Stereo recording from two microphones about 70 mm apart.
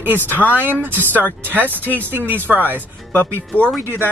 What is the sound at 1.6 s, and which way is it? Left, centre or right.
Speech, left.